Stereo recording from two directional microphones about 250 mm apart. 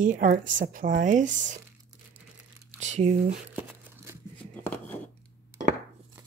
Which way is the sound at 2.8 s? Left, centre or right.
Right.